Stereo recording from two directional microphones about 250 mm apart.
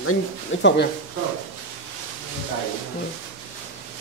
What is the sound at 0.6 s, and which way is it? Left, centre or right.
Speech, left.